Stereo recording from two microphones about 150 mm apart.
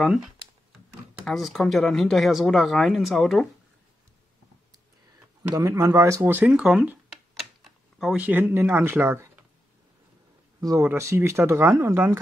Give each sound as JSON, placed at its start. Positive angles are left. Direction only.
{"t": 0.0, "sound": "speech", "side_deg": 0}
{"t": 5.5, "sound": "speech", "side_deg": -25}
{"t": 10.6, "sound": "speech", "side_deg": -20}